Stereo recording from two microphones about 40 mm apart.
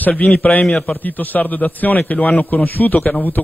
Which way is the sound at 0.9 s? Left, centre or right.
Left.